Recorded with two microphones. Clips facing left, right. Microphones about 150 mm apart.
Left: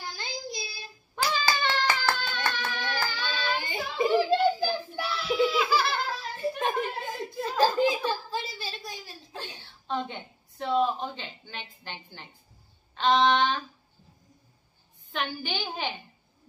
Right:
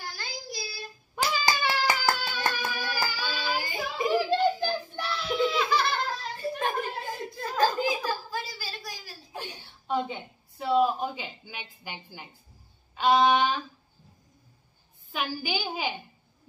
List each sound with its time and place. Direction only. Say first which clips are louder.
0.0 s child singing: left 2 dB; 20° left (ahead or behind)
1.1 s hands: even; 10° right (ahead or behind)
3.5 s child singing: even; 20° left (ahead or behind)
4.3 s a sound: left 1 dB; 5° left (ahead or behind)
6.7 s chuckle: left 1 dB; centre (ahead or behind)
7.5 s a sound: left 2 dB; 25° left (ahead or behind)
9.3 s a sound: right 3 dB; 15° right (ahead or behind)
12.9 s a woman's voice: right 1 dB; 10° right (ahead or behind)
15.1 s a woman's voice: right 1 dB; 5° right (ahead or behind)